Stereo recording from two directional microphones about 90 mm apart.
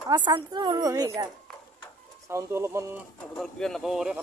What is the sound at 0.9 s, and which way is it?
Speech, 40° right (ahead or behind).